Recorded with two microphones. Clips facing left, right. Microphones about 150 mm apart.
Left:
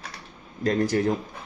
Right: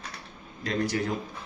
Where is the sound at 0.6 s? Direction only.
40° left (ahead or behind).